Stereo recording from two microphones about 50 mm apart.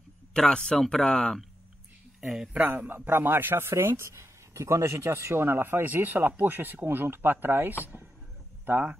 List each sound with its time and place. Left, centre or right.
0.3 s speech: centre
2.1 s speech: centre
2.6 s speech: right